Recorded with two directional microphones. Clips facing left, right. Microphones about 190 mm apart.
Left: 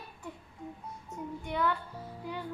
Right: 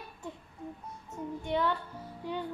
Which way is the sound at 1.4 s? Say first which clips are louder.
Right 1 dB; 25° right (ahead or behind).